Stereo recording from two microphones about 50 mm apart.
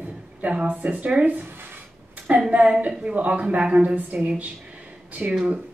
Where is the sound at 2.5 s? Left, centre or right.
Right.